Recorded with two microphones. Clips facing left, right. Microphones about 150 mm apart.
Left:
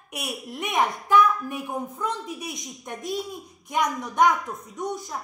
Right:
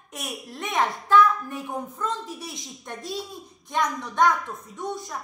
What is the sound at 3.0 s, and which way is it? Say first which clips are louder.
A child's voice: left 4 dB; 20° left (ahead or behind).